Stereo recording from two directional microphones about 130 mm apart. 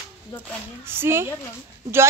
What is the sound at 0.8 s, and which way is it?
Speech, 20° right (ahead or behind).